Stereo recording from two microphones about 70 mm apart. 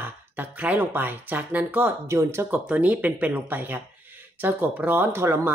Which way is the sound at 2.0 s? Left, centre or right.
Right.